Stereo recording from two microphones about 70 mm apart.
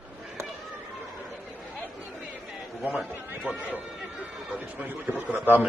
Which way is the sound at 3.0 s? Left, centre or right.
Right.